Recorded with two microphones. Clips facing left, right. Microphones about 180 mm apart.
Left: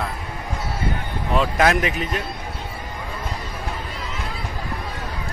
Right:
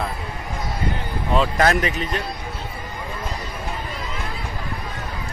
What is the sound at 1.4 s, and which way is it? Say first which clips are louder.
Speech: left 1 dB; 5° left (ahead or behind).